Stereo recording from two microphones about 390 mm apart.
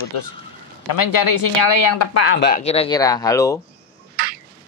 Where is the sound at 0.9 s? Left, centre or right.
Left.